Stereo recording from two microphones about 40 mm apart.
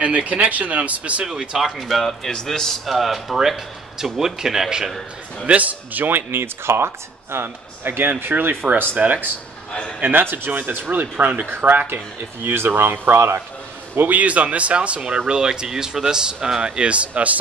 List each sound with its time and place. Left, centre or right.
0.0 s speech: right
1.2 s a man's voice: centre
1.6 s speech: centre
2.9 s a man's voice: centre
5.5 s speech: right
6.0 s speech: right
7.4 s a man's voice: right
8.9 s speech: right
10.3 s speech: right
12.4 s speech: right
13.9 s speech: right